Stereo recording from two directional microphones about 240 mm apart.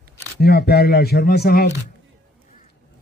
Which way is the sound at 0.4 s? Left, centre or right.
Left.